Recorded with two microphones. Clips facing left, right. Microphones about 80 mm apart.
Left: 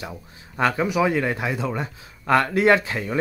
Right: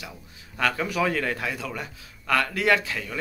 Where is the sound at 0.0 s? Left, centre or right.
Left.